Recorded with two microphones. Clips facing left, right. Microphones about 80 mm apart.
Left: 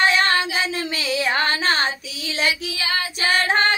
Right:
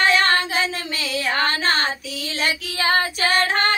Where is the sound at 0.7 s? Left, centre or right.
Left.